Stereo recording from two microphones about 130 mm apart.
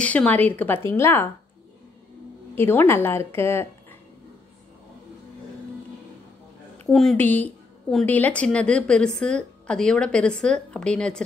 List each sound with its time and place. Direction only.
0.0 s a woman's voice: 10° left (ahead or behind)
2.5 s a woman's voice: 15° left (ahead or behind)
6.9 s speech: centre (ahead or behind)
7.2 s a woman's voice: 15° left (ahead or behind)